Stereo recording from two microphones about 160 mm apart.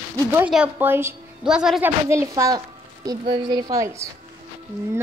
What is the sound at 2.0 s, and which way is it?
A woman's voice, 15° right (ahead or behind).